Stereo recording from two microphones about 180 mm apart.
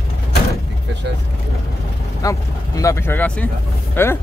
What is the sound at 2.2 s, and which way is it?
Speech, 20° left (ahead or behind).